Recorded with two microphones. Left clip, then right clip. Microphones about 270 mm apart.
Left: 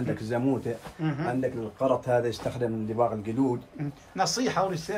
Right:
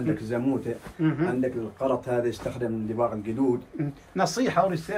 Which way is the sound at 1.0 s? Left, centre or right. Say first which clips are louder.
Right 6 dB; centre.